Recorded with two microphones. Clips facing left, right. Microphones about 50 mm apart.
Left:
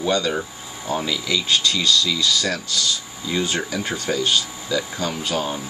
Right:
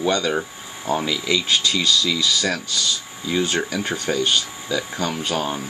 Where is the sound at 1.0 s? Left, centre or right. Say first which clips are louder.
Right 1 dB; centre.